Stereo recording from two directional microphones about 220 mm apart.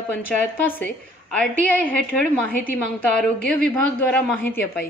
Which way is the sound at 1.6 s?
5° left (ahead or behind).